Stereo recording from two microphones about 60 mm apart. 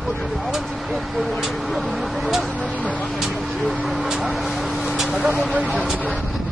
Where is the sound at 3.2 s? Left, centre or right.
Centre.